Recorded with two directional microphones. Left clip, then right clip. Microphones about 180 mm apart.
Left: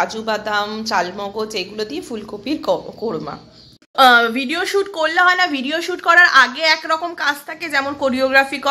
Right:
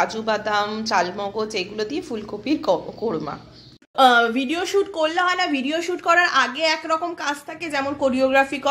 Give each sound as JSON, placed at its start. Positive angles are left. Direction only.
{"t": 0.0, "sound": "speech", "side_deg": 0}